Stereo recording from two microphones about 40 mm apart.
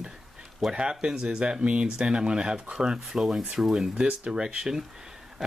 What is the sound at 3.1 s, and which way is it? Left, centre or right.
Speech, centre.